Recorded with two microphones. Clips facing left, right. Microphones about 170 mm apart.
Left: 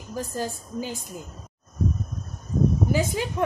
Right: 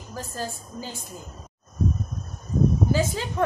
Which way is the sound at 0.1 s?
15° left (ahead or behind).